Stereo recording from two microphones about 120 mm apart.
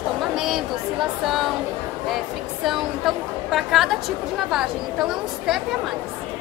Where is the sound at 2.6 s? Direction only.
Centre (ahead or behind).